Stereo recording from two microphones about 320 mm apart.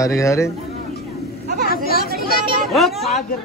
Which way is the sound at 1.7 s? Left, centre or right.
Left.